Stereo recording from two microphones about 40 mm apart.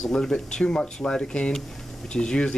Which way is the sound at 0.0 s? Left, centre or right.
Centre.